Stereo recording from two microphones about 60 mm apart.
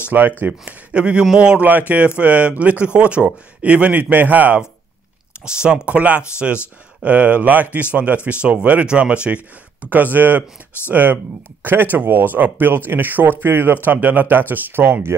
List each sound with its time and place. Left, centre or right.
0.4 s speech: right
1.7 s speech: right
5.4 s speech: centre; by 15.0 s right